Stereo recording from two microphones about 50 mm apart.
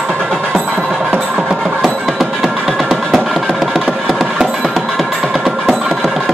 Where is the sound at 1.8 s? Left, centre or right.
Centre.